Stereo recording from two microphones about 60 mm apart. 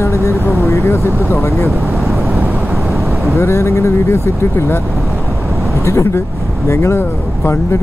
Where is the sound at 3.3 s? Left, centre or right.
Left.